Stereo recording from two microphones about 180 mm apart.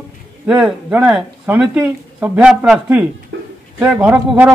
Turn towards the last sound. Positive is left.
turn(degrees=-10)  # may be behind; listen again after turning